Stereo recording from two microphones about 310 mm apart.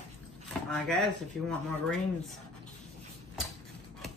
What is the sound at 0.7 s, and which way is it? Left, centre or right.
Speech, centre.